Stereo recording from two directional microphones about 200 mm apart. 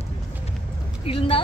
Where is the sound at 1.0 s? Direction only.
25° left (ahead or behind).